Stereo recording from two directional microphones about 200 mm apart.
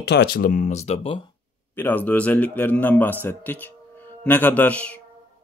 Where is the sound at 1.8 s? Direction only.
10° left (ahead or behind).